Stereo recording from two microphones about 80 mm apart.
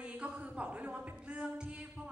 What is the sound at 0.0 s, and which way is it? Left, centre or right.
Speech, centre.